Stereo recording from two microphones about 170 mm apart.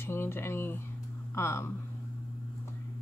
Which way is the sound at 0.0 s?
15° left (ahead or behind).